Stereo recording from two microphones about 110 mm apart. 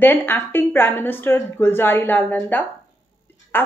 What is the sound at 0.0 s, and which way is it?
A woman's voice, 15° left (ahead or behind).